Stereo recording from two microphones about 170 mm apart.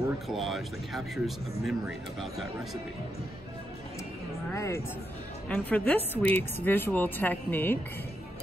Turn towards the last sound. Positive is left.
turn(degrees=10)  # may be behind; listen again after turning